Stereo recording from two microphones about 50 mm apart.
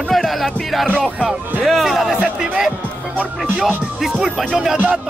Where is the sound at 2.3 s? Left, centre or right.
Centre.